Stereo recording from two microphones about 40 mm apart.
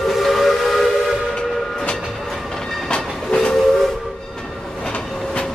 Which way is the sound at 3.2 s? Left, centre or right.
Centre.